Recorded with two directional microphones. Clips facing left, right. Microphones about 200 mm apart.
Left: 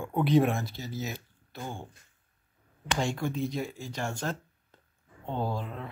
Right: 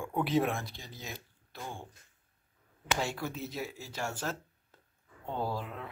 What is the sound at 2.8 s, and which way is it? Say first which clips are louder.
Speech: left 4 dB; 5° right (ahead or behind).